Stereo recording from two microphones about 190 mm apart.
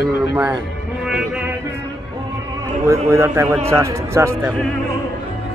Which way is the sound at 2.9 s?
15° right (ahead or behind).